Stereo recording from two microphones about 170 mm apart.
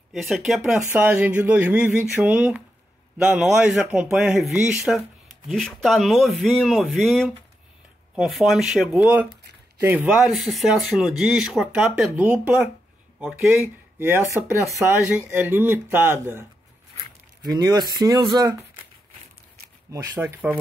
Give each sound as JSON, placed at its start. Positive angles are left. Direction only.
{"t": 0.1, "sound": "speech", "side_deg": 0}
{"t": 14.3, "sound": "speech", "side_deg": 20}
{"t": 14.8, "sound": "speech", "side_deg": -15}
{"t": 17.4, "sound": "speech", "side_deg": -25}
{"t": 19.9, "sound": "speech", "side_deg": -15}